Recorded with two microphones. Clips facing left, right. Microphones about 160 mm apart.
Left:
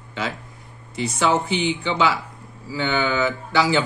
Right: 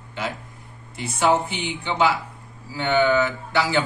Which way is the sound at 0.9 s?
90° left.